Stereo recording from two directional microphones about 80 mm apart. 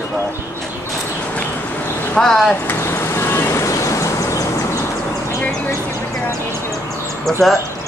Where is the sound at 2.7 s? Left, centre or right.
Left.